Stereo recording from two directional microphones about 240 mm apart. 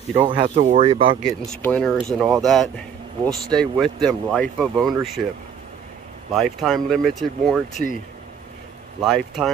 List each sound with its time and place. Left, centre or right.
0.1 s speech: right
1.2 s speech: centre
6.3 s speech: centre
9.0 s speech: centre